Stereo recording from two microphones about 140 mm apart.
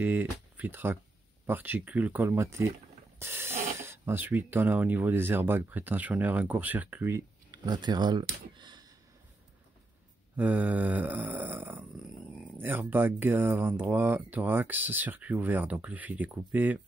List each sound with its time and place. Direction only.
0.0 s speech: 15° right (ahead or behind)
3.2 s ratchet: 15° right (ahead or behind)
3.7 s speech: 20° right (ahead or behind)
7.6 s speech: 30° right (ahead or behind)
10.3 s speech: 10° right (ahead or behind)